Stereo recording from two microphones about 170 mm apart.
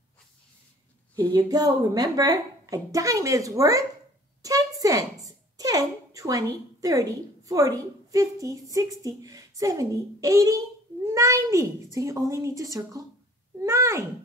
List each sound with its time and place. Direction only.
1.3 s a child's voice: 20° right (ahead or behind)
4.4 s a sound: 20° right (ahead or behind)
5.2 s a woman's voice: 20° right (ahead or behind)